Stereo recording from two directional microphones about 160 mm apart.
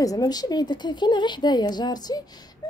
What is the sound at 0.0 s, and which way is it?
A woman's voice, 20° left (ahead or behind).